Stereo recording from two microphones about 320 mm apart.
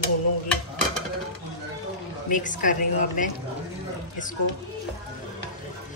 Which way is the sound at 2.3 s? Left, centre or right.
Left.